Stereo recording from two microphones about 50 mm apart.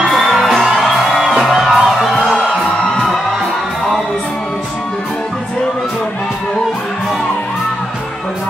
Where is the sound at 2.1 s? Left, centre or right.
Centre.